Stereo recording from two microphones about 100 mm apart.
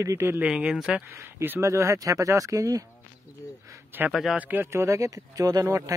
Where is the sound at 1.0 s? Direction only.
20° right (ahead or behind).